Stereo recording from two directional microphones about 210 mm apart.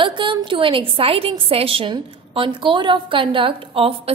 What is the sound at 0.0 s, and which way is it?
A woman's voice, 25° right (ahead or behind).